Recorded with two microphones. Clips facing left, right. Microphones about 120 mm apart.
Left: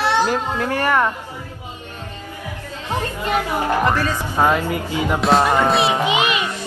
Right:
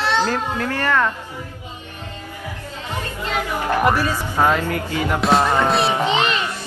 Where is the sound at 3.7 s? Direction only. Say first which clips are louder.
Right 3 dB; 15° right (ahead or behind).